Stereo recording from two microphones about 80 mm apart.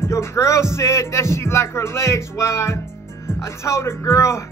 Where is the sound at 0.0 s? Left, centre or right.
Left.